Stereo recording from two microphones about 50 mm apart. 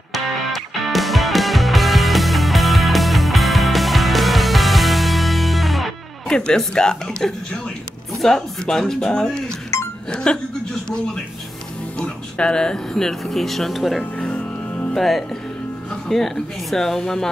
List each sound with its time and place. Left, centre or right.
0.1 s music: centre
6.2 s speech: centre
12.0 s speech: centre
14.1 s music: left
15.0 s speech: centre